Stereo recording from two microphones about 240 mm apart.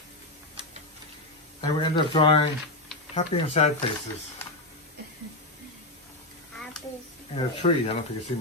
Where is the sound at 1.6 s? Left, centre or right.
Centre.